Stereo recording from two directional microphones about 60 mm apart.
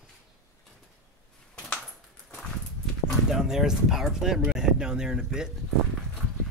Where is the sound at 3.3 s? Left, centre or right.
Centre.